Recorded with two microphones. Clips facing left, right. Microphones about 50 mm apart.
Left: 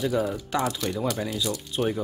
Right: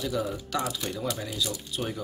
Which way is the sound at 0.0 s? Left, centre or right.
Left.